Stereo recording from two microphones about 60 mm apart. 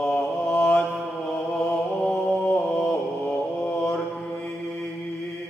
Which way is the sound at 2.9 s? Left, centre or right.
Left.